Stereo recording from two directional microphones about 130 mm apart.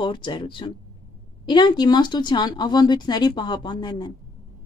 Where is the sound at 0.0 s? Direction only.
40° left (ahead or behind).